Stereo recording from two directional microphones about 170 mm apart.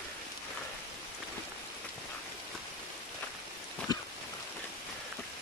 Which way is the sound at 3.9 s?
25° left (ahead or behind).